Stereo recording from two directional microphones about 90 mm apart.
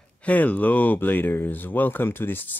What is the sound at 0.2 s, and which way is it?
Speech, 15° left (ahead or behind).